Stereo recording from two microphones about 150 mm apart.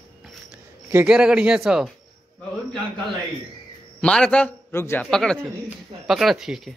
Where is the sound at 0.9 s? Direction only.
5° right (ahead or behind).